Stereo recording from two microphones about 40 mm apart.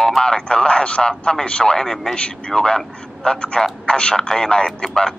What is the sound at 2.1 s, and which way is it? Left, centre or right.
Speech, left.